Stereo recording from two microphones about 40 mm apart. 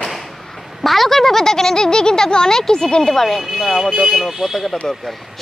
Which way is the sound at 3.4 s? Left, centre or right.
Centre.